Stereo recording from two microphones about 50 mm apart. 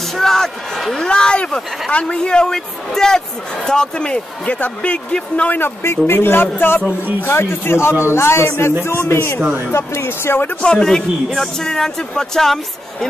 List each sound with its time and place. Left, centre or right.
0.1 s speech: centre
0.9 s a man's voice: centre
5.6 s a man's voice: left
10.6 s speech: centre